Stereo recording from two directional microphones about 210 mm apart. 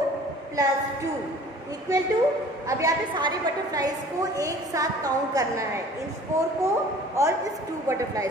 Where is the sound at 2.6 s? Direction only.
15° right (ahead or behind).